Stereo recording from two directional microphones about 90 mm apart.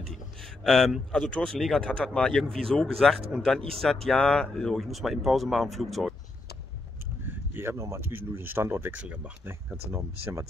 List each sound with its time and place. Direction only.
0.7 s speech: 5° left (ahead or behind)
1.3 s speech: 10° left (ahead or behind)
7.2 s speech: 25° right (ahead or behind)